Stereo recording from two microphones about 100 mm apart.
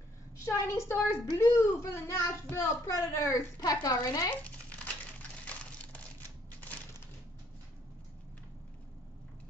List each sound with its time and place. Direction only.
0.5 s a woman's voice: 25° left (ahead or behind)
4.5 s crumpling: 15° left (ahead or behind)